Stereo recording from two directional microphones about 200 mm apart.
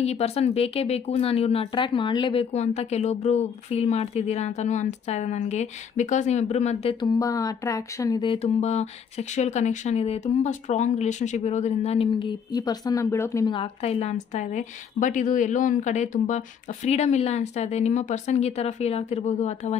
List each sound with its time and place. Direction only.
0.0 s speech: 30° left (ahead or behind)